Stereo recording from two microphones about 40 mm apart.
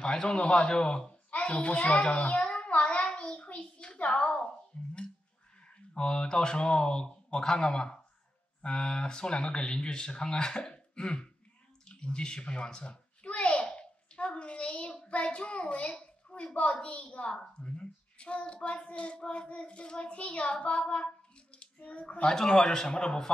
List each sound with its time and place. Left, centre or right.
0.0 s a child's voice: centre
2.7 s a sound: left
5.9 s a child's voice: left
13.2 s a sound: left
15.0 s child singing: left
17.6 s a child's voice: left
20.5 s child singing: left
21.5 s speech: left
22.2 s a man's voice: centre